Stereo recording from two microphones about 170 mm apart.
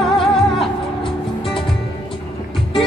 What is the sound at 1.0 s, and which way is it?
Music, 30° left (ahead or behind).